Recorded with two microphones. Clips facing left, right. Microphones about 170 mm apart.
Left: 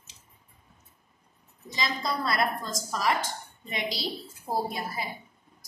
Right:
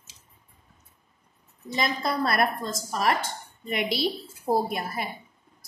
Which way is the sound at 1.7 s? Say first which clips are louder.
Right 4 dB; 60° right (ahead or behind).